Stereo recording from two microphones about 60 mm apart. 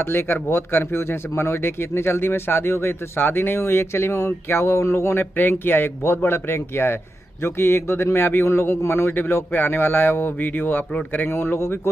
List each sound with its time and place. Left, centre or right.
0.0 s a man's voice: left